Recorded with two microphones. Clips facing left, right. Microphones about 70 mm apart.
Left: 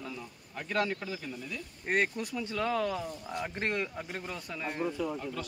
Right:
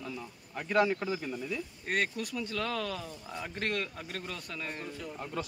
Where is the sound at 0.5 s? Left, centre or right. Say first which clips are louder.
Right 4 dB; centre.